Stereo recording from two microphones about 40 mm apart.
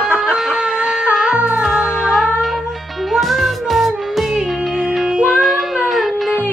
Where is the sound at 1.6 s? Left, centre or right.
Centre.